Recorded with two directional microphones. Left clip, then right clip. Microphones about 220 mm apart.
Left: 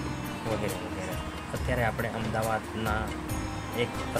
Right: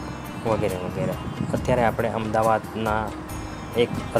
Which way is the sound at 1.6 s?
20° right (ahead or behind).